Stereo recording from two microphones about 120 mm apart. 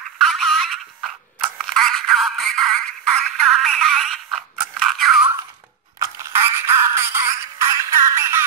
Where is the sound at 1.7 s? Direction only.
Centre (ahead or behind).